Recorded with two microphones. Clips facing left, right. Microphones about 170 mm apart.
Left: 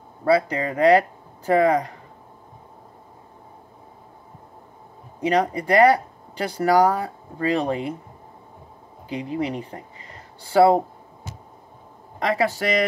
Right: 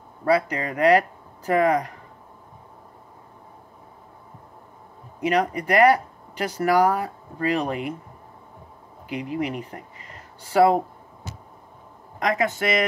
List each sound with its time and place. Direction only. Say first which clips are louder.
0.2 s speech: left 2 dB; 30° left (ahead or behind)
5.2 s speech: left 1 dB; 30° left (ahead or behind)
9.1 s speech: left 1 dB; 30° left (ahead or behind)
12.2 s speech: left 1 dB; 35° left (ahead or behind)